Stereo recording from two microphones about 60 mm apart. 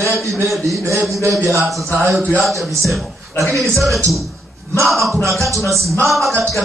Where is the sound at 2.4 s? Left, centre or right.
Centre.